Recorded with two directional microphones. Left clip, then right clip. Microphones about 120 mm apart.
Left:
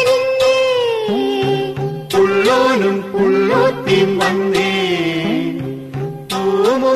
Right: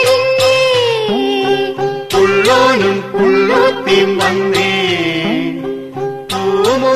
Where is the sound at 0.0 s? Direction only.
25° left (ahead or behind).